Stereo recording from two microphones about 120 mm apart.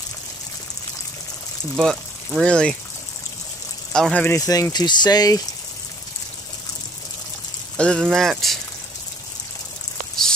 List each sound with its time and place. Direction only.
1.8 s speech: 5° left (ahead or behind)
3.9 s speech: 5° left (ahead or behind)
4.3 s speech: 30° left (ahead or behind)
7.7 s speech: 10° left (ahead or behind)